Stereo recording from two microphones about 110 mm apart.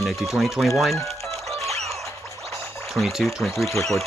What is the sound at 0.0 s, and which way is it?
Speech, centre (ahead or behind).